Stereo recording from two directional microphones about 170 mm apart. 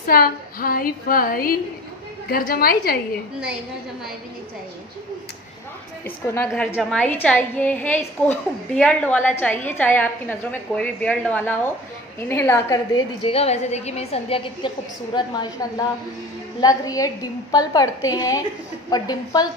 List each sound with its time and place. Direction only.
0.0 s a woman's voice: 60° left (ahead or behind)
6.0 s a woman's voice: 15° left (ahead or behind)
6.7 s a woman's voice: 5° left (ahead or behind); by 15.5 s 25° left (ahead or behind)
16.6 s a woman's voice: 20° left (ahead or behind)